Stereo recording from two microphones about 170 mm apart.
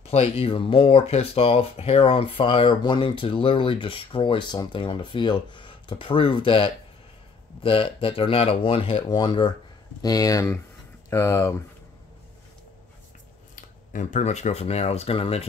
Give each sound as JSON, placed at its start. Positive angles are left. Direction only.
{"t": 0.0, "sound": "speech", "side_deg": 40}
{"t": 13.6, "sound": "speech", "side_deg": 50}